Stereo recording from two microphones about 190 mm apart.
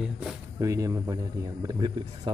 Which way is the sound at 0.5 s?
15° right (ahead or behind).